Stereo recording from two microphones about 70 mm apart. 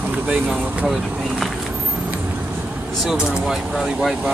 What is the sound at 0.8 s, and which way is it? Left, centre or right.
Speech, centre.